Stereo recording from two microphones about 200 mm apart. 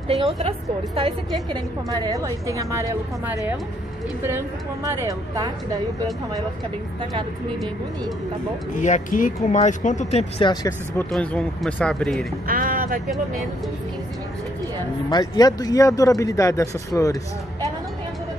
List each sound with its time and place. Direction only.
0.4 s a woman's voice: 30° right (ahead or behind)
8.7 s speech: 40° left (ahead or behind)
10.4 s speech: 20° left (ahead or behind)
11.1 s speech: centre (ahead or behind)
12.4 s speech: 45° right (ahead or behind)
15.0 s speech: 20° left (ahead or behind)